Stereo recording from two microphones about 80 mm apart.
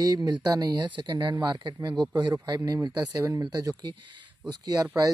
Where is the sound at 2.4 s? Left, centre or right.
Right.